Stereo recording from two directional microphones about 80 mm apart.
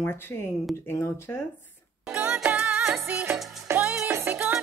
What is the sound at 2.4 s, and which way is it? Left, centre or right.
Music, right.